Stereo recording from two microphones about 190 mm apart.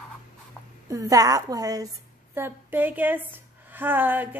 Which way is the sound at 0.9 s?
20° right (ahead or behind).